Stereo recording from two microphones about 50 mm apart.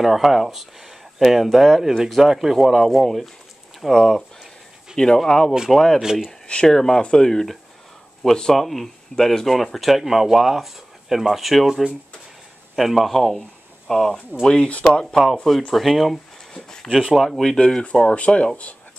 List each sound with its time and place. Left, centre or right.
0.0 s speech: centre
6.4 s speech: left
14.4 s speech: centre
15.7 s speech: centre
16.5 s a sound: centre
17.1 s speech: centre; by 18.5 s left